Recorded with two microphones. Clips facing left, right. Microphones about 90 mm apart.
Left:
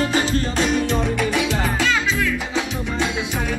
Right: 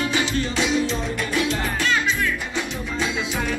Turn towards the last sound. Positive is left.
turn(degrees=90)